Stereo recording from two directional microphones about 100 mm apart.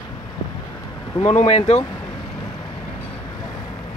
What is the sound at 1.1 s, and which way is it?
Speech, 85° left.